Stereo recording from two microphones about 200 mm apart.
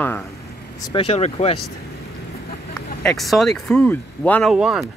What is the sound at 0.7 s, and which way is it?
Speech, 25° left (ahead or behind).